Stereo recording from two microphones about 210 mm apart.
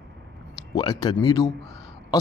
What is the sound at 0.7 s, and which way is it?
Speech, 20° left (ahead or behind).